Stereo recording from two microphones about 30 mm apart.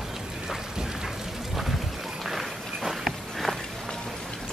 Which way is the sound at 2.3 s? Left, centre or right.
Centre.